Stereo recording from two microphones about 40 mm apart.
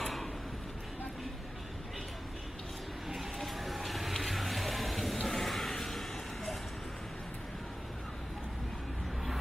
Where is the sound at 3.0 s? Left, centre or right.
Centre.